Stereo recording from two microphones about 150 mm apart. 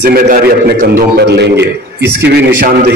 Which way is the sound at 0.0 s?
75° right (ahead or behind).